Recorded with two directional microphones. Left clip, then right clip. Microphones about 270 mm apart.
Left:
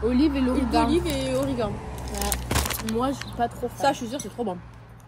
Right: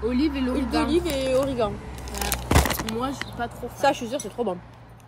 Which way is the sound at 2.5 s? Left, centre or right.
Right.